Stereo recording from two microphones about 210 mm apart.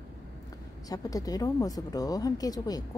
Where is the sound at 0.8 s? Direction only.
15° left (ahead or behind).